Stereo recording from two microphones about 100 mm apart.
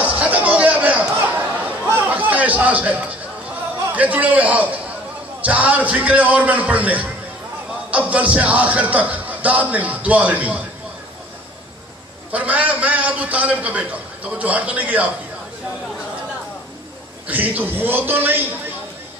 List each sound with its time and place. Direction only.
0.0 s chatter: 15° right (ahead or behind)
3.9 s a man's voice: 15° right (ahead or behind)
8.1 s a man's voice: 15° right (ahead or behind)
12.3 s a man's voice: 15° right (ahead or behind)
17.3 s a man's voice: 15° right (ahead or behind)